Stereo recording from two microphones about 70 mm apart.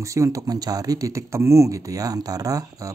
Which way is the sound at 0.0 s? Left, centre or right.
Right.